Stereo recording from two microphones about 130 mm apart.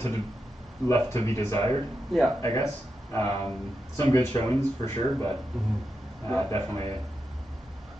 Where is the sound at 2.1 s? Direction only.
Centre (ahead or behind).